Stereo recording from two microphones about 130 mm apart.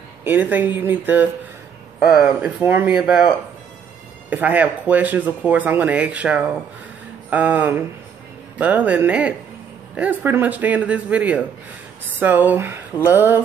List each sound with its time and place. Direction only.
0.2 s speech: 15° right (ahead or behind)